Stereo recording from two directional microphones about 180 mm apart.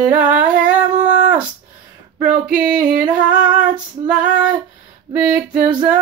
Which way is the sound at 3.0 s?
5° right (ahead or behind).